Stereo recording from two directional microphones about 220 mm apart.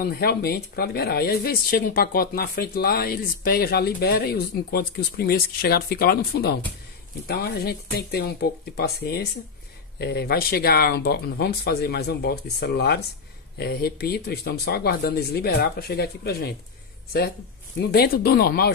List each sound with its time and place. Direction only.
0.0 s speech: 45° left (ahead or behind)
17.7 s speech: 45° left (ahead or behind)